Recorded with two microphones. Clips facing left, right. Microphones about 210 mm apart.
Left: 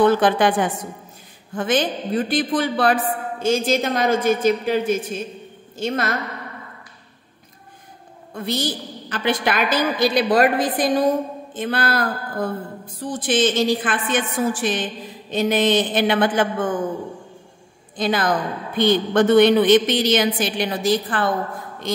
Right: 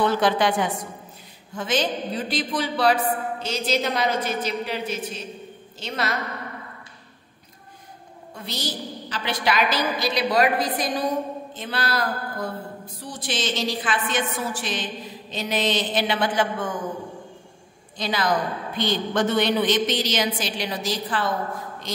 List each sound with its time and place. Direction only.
0.0 s a man's voice: 50° left (ahead or behind)
8.4 s a man's voice: 55° left (ahead or behind)
17.9 s a man's voice: 50° left (ahead or behind)